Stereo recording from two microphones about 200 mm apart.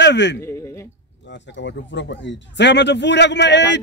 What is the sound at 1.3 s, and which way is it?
A man's voice, 65° left (ahead or behind).